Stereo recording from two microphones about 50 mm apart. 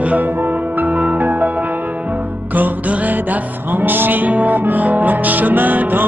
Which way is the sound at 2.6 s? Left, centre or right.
Right.